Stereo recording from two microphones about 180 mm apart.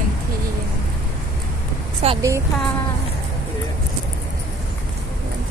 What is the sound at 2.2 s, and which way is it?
Speech, 15° right (ahead or behind).